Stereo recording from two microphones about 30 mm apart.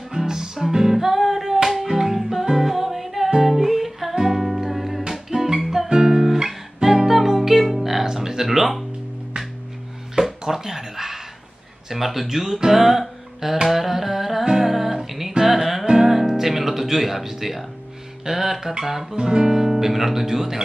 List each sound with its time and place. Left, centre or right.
0.1 s music: centre
5.3 s music: centre
8.0 s music: centre
10.4 s a sound: centre
11.9 s speech: centre
12.7 s music: centre
16.0 s guitar: centre
18.2 s speech: centre
19.2 s guitar: right
19.6 s speech: centre